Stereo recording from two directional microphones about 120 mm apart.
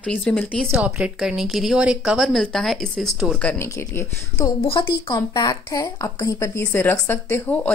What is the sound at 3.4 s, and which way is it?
Speech, 15° left (ahead or behind).